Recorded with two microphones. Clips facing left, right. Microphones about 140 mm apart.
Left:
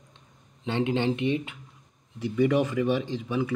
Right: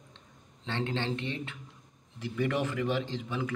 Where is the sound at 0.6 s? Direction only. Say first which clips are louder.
Left 7 dB; 15° left (ahead or behind).